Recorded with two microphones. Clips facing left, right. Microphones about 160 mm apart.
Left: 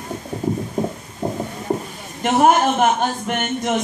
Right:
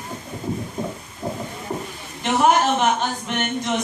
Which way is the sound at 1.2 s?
45° left (ahead or behind).